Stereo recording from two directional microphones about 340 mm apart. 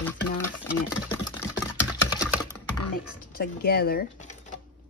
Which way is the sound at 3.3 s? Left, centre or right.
Left.